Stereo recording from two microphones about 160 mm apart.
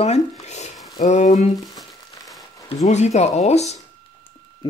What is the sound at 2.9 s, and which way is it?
Speech, 45° left (ahead or behind).